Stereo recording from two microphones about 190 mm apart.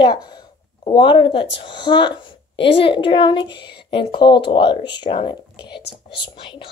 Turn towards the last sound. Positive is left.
turn(degrees=25)  # may be behind; listen again after turning